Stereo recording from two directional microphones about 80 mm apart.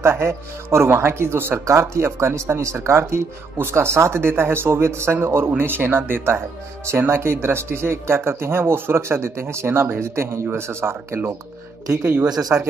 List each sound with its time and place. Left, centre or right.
0.0 s speech: right
11.9 s speech: right
12.3 s speech: right